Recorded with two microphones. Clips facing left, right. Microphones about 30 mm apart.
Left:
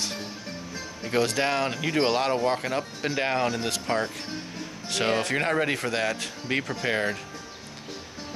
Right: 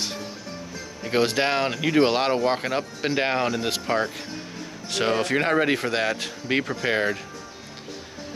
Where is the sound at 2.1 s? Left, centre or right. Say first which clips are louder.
Right 2 dB; right.